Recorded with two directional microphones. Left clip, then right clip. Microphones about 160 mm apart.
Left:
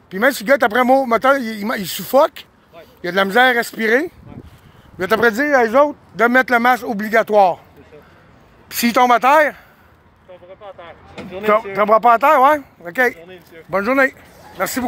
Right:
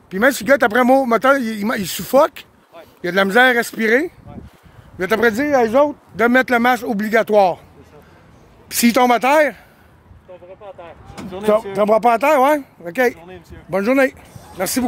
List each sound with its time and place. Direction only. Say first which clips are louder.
0.1 s speech: even; 35° right (ahead or behind)
4.9 s speech: left 1 dB; 15° right (ahead or behind); by 7.6 s 40° right (ahead or behind)
8.6 s speech: left 1 dB; 35° right (ahead or behind)
11.3 s speech: left 1 dB; 30° right (ahead or behind)